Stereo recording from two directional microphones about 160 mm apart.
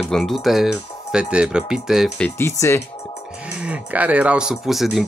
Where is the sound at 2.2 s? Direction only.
15° left (ahead or behind).